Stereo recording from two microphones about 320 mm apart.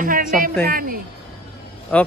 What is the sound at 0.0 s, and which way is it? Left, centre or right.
A woman's voice, right.